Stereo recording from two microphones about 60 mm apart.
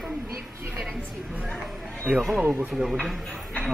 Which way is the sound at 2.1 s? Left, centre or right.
Right.